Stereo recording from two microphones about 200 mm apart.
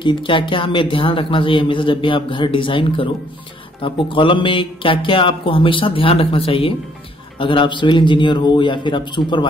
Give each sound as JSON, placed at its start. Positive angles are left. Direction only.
{"t": 0.0, "sound": "a man's voice", "side_deg": 25}